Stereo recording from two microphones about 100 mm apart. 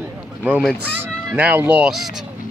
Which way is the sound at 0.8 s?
20° right (ahead or behind).